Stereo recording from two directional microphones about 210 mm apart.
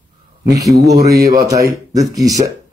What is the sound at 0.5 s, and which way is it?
Speech, 15° right (ahead or behind).